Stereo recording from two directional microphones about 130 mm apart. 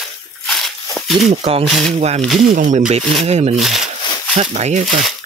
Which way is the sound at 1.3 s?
50° right (ahead or behind).